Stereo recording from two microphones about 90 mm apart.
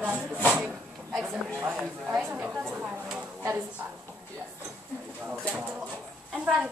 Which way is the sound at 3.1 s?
20° right (ahead or behind).